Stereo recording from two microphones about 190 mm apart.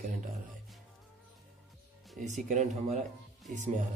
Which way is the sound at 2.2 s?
45° right (ahead or behind).